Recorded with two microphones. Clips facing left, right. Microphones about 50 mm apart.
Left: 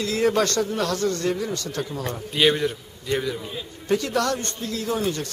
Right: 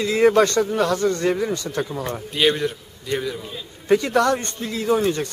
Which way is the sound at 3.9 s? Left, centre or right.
Right.